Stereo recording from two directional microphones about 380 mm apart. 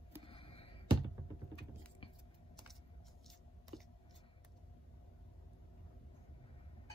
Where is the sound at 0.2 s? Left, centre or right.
Centre.